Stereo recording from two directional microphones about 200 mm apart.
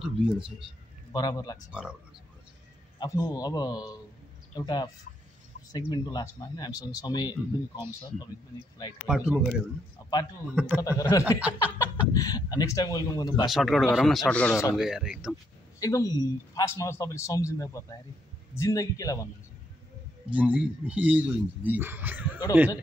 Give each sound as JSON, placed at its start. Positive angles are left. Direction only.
{"t": 0.0, "sound": "speech", "side_deg": -5}
{"t": 1.1, "sound": "speech", "side_deg": 20}
{"t": 1.7, "sound": "speech", "side_deg": -5}
{"t": 3.0, "sound": "speech", "side_deg": 20}
{"t": 9.0, "sound": "speech", "side_deg": -5}
{"t": 10.5, "sound": "speech", "side_deg": -5}
{"t": 10.8, "sound": "a man's voice", "side_deg": 15}
{"t": 11.3, "sound": "speech", "side_deg": -5}
{"t": 11.8, "sound": "speech", "side_deg": 15}
{"t": 13.5, "sound": "speech", "side_deg": 0}
{"t": 14.8, "sound": "speech", "side_deg": 0}
{"t": 15.8, "sound": "a man's voice", "side_deg": 15}
{"t": 20.2, "sound": "speech", "side_deg": -5}